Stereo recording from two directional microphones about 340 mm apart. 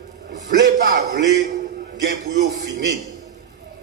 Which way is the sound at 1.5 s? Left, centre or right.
Right.